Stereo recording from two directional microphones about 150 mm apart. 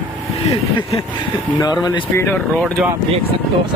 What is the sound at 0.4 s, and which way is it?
Speech, 40° left (ahead or behind).